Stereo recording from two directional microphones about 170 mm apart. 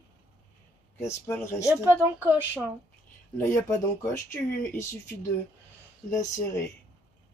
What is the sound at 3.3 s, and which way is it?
Speech, 15° left (ahead or behind).